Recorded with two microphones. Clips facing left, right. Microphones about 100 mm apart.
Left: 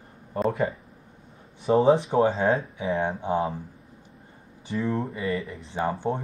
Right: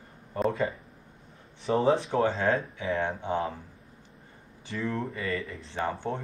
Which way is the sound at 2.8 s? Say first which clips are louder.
Left 3 dB; 15° left (ahead or behind).